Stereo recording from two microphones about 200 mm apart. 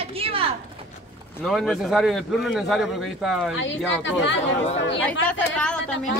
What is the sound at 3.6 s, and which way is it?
Speech, 70° left (ahead or behind).